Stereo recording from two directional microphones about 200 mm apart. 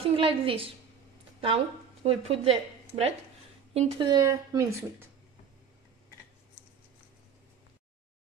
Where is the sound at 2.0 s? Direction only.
30° right (ahead or behind).